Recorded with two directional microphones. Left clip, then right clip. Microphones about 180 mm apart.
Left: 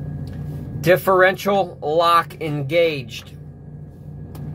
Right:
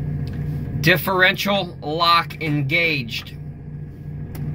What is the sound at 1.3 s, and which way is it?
Speech, 25° left (ahead or behind).